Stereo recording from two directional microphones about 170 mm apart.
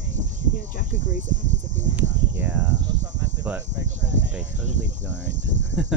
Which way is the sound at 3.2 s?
10° right (ahead or behind).